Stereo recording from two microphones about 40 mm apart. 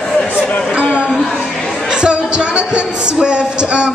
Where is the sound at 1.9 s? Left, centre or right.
Right.